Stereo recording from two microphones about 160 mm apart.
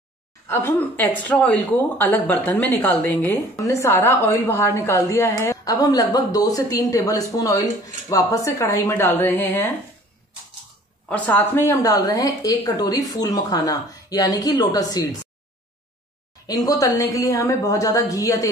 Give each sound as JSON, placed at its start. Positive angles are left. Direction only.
{"t": 0.5, "sound": "speech", "side_deg": 15}
{"t": 11.1, "sound": "speech", "side_deg": 10}
{"t": 16.4, "sound": "speech", "side_deg": 25}